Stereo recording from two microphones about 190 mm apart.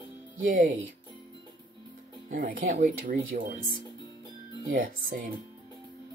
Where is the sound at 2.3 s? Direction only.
45° right (ahead or behind).